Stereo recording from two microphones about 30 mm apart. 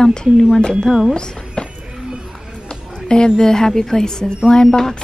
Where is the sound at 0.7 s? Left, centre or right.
Centre.